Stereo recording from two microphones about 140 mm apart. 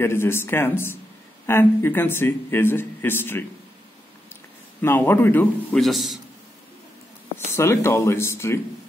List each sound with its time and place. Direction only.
0.0 s a man's voice: 15° left (ahead or behind)
4.8 s a man's voice: 15° left (ahead or behind)
5.8 s a man's voice: centre (ahead or behind)
7.3 s speech: 20° left (ahead or behind)